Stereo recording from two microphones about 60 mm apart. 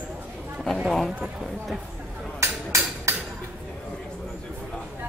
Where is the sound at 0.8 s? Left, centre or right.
Centre.